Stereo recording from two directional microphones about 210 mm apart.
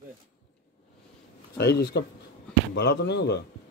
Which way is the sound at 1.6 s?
50° left (ahead or behind).